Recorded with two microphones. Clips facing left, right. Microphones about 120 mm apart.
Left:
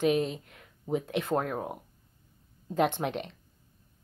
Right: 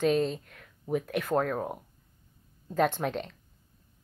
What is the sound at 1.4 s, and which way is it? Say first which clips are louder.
Speech: right 2 dB; 10° left (ahead or behind).